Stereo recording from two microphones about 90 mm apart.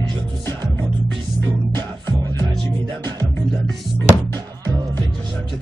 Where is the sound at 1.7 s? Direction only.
55° right (ahead or behind).